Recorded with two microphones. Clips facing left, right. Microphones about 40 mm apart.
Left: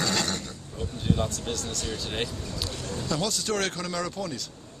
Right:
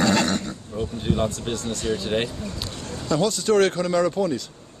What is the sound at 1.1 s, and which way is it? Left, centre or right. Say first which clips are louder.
Speech: right 3 dB; centre.